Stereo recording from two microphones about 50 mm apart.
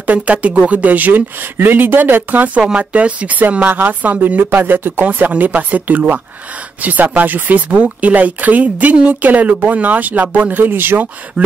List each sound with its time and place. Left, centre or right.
0.0 s speech: right
2.6 s speech: right
5.0 s speech: right
11.4 s speech: right